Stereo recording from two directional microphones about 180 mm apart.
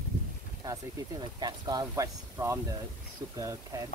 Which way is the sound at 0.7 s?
20° right (ahead or behind).